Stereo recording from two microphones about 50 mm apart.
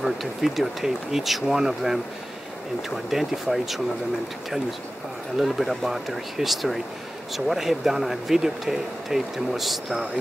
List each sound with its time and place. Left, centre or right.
0.0 s speech: centre
3.1 s speech: centre
5.4 s speech: centre